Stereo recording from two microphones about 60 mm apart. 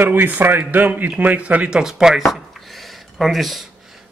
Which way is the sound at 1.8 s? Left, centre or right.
Centre.